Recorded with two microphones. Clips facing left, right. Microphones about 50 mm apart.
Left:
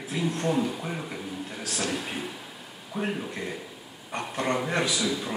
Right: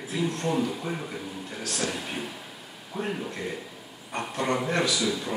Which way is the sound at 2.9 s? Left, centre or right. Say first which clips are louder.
Left 1 dB; centre.